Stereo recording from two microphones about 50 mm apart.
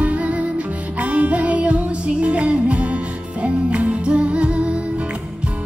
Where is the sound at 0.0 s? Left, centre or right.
Right.